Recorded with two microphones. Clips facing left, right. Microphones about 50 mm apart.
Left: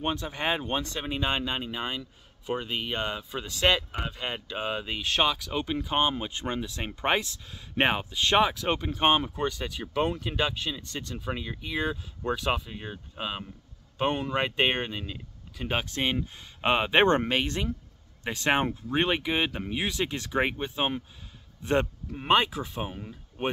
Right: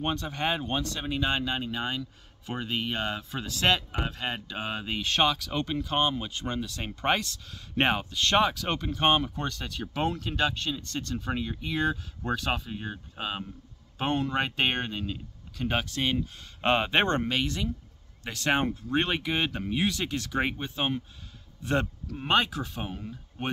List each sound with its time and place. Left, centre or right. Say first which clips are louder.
0.0 s speech: even; centre
5.8 s a man's voice: left 1 dB; centre
15.8 s speech: even; left
16.6 s speech: left 1 dB; centre
17.0 s speech: left 4 dB; left
22.3 s speech: left 2 dB; centre